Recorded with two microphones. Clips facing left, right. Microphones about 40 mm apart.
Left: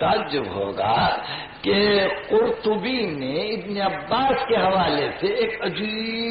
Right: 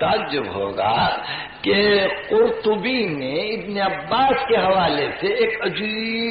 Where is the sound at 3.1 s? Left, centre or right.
Centre.